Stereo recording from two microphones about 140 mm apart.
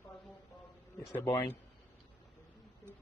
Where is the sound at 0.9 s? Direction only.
20° left (ahead or behind).